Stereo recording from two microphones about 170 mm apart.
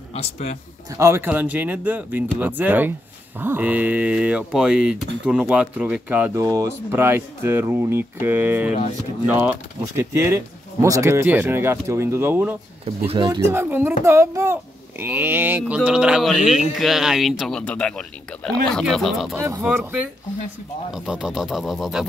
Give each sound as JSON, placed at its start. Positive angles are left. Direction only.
{"t": 0.1, "sound": "speech", "side_deg": 40}
{"t": 0.8, "sound": "speech", "side_deg": -15}
{"t": 6.4, "sound": "speech", "side_deg": -20}
{"t": 12.8, "sound": "speech", "side_deg": -35}
{"t": 13.3, "sound": "speech", "side_deg": -15}
{"t": 19.3, "sound": "speech", "side_deg": -15}